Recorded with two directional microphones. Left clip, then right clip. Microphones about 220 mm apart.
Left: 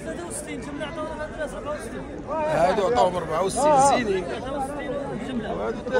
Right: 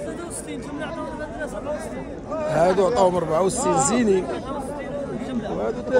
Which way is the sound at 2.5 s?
45° right (ahead or behind).